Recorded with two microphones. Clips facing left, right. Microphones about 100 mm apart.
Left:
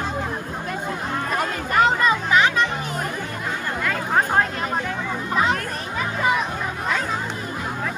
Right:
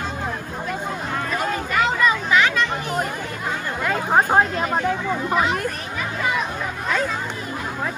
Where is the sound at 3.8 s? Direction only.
20° right (ahead or behind).